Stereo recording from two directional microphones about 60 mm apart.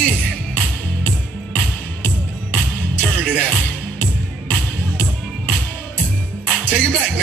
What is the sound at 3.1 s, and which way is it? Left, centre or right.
Music, right.